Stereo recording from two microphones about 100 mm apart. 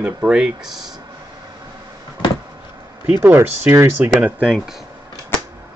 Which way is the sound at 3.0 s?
20° right (ahead or behind).